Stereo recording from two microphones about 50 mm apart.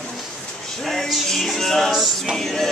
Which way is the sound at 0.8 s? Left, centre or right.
Centre.